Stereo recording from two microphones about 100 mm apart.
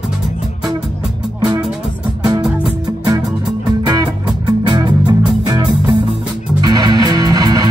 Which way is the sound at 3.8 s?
40° right (ahead or behind).